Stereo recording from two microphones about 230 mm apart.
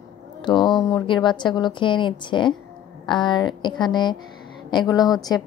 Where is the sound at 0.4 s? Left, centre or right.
Centre.